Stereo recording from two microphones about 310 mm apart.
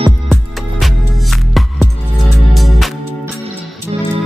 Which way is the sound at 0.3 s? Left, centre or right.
Centre.